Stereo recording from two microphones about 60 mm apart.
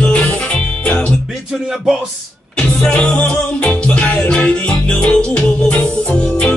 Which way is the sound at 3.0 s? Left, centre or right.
Centre.